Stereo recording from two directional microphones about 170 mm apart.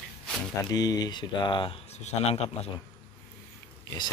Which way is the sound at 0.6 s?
20° left (ahead or behind).